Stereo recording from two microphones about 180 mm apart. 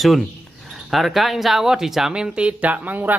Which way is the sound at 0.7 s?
Centre (ahead or behind).